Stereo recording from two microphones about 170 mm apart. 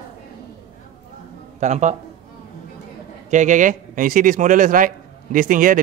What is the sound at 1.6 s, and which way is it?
Speech, 45° right (ahead or behind).